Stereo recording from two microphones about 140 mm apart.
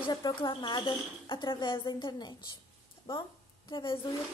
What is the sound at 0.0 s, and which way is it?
Speech, 35° left (ahead or behind).